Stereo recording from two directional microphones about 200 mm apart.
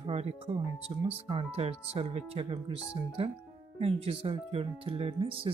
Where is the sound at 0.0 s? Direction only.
30° right (ahead or behind).